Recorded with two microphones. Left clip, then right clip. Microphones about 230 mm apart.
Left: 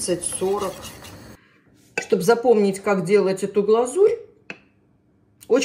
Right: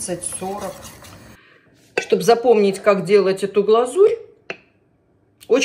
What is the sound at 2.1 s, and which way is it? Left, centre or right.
Speech, centre.